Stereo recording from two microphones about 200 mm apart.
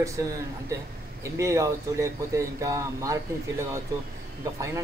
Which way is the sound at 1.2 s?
15° right (ahead or behind).